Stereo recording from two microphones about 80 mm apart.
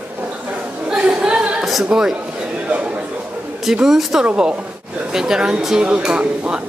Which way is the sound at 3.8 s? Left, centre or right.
Centre.